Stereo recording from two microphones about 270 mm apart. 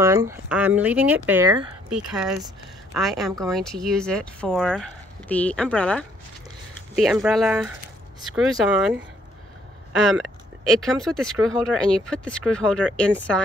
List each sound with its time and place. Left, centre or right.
0.0 s speech: centre
1.9 s speech: centre
10.0 s speech: centre